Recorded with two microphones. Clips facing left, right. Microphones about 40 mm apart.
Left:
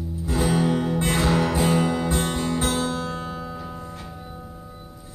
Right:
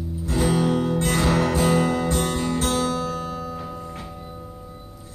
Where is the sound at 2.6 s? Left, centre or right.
Left.